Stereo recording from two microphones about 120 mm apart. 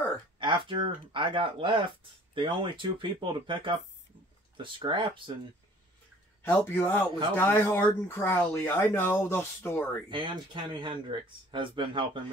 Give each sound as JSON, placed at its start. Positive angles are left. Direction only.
{"t": 0.4, "sound": "speech", "side_deg": -45}
{"t": 6.4, "sound": "speech", "side_deg": 15}
{"t": 10.0, "sound": "speech", "side_deg": -40}